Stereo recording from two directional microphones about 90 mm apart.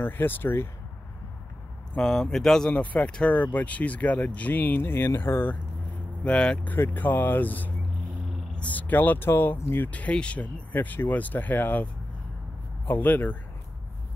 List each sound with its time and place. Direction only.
0.0 s speech: 20° left (ahead or behind)
2.0 s speech: 5° left (ahead or behind)
2.7 s speech: 15° left (ahead or behind)
6.2 s speech: 10° left (ahead or behind)